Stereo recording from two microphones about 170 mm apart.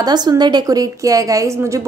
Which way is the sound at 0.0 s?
25° right (ahead or behind).